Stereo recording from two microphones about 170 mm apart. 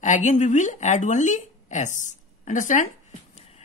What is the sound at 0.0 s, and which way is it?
Speech, 45° left (ahead or behind).